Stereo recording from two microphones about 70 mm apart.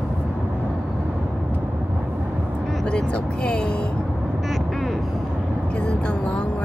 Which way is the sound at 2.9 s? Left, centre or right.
Centre.